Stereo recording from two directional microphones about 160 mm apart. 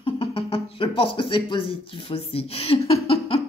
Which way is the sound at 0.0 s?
35° left (ahead or behind).